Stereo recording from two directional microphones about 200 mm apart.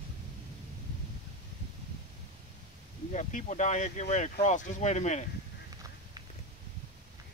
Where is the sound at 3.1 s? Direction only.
40° left (ahead or behind).